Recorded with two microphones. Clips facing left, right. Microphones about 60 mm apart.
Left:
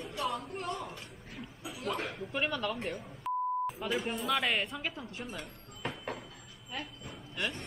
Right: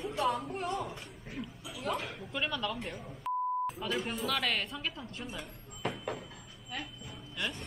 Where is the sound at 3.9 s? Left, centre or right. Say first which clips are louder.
Left 1 dB; centre.